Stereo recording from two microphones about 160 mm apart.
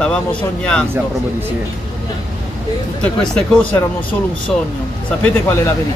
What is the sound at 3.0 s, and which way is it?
Speech, 5° left (ahead or behind).